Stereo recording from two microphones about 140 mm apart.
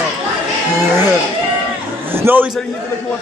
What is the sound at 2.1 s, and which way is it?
Speech, 15° right (ahead or behind).